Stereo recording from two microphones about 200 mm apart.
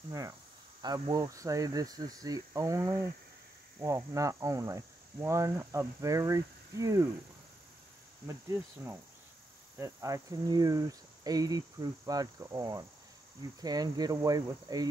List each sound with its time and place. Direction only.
0.8 s cricket: 20° right (ahead or behind)
8.3 s cricket: 15° right (ahead or behind)
13.6 s speech: 20° right (ahead or behind)